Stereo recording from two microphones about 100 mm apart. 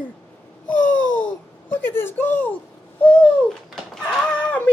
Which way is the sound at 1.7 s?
20° left (ahead or behind).